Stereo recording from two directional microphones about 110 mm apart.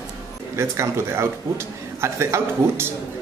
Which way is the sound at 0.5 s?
25° right (ahead or behind).